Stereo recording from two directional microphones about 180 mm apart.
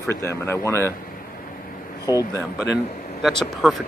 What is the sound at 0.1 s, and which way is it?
Speech, 15° left (ahead or behind).